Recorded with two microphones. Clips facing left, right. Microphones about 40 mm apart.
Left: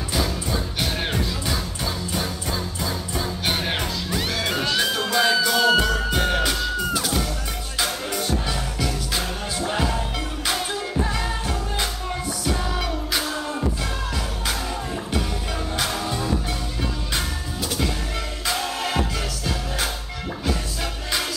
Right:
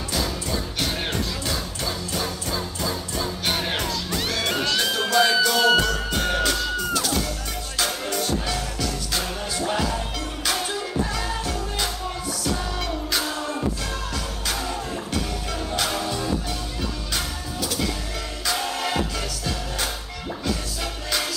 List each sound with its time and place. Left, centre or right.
0.1 s music: centre
5.8 s music: centre
11.1 s music: left
12.8 s music: centre
15.8 s music: centre
17.1 s music: left
18.6 s music: centre